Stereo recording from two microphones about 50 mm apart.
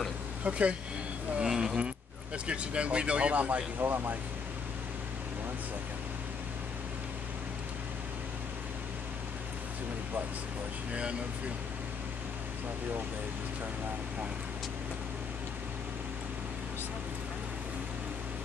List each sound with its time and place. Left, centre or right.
0.4 s speech: right
1.5 s speech: centre
2.3 s speech: right
3.8 s speech: right
10.9 s speech: right